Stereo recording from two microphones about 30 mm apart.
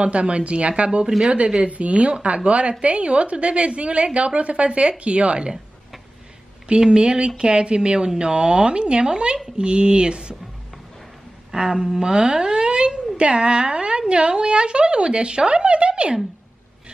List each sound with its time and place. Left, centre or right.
0.0 s a woman's voice: right
1.1 s a woman's voice: centre
1.7 s a woman's voice: right
6.8 s a woman's voice: right
11.5 s a woman's voice: right